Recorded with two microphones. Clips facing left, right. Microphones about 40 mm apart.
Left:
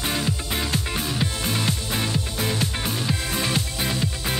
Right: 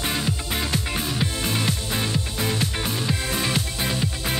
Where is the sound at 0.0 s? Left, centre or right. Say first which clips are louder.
Even; centre.